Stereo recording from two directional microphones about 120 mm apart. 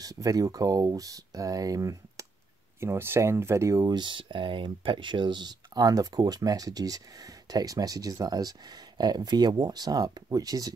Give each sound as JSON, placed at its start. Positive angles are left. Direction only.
{"t": 0.0, "sound": "speech", "side_deg": -30}